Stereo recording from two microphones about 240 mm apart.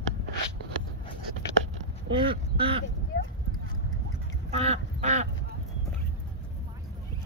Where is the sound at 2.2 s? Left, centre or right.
Right.